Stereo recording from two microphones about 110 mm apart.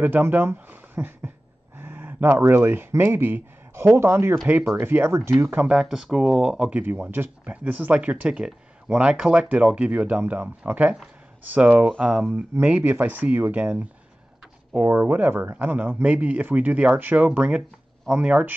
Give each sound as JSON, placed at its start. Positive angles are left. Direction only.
{"t": 0.0, "sound": "speech", "side_deg": -20}
{"t": 5.7, "sound": "speech", "side_deg": -5}
{"t": 6.8, "sound": "speech", "side_deg": -20}